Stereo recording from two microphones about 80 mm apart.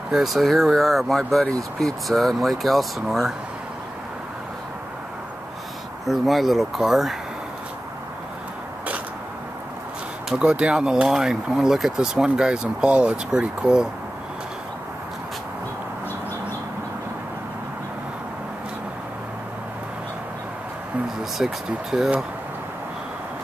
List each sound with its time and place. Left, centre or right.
0.1 s speech: centre
6.0 s speech: centre
10.3 s speech: centre
21.2 s speech: centre